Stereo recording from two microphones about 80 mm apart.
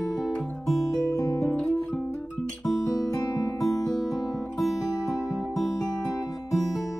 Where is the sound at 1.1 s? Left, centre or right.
Left.